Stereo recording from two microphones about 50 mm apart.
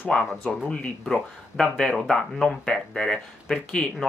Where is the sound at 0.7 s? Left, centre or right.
Left.